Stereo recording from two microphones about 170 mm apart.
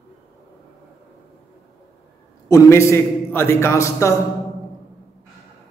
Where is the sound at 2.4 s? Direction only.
20° left (ahead or behind).